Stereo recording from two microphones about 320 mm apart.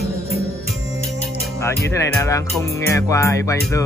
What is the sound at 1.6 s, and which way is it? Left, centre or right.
Speech, centre.